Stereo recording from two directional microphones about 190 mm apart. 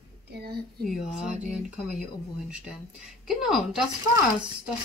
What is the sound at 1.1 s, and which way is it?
A woman's voice, 5° right (ahead or behind).